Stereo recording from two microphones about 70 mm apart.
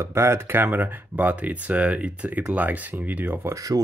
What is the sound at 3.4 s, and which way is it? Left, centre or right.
Speech, right.